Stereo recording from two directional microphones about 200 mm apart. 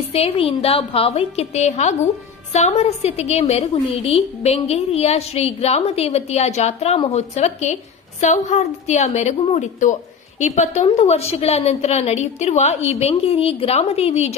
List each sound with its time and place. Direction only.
0.1 s a woman's voice: 30° left (ahead or behind)